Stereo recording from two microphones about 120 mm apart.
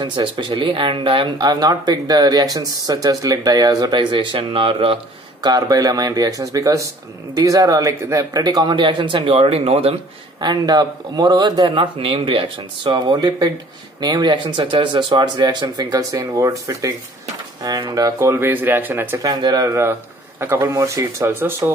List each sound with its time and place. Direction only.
0.0 s speech: 40° right (ahead or behind)
5.4 s speech: 30° right (ahead or behind); by 9.9 s 55° right (ahead or behind)
10.4 s a man's voice: 35° right (ahead or behind)
18.3 s speech: 15° right (ahead or behind)
19.2 s a man's voice: 30° right (ahead or behind)